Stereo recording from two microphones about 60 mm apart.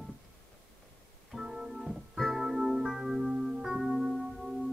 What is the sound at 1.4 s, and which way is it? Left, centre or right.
Keyboard, centre.